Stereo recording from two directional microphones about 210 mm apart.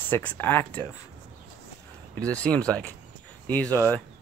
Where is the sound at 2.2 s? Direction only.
5° left (ahead or behind).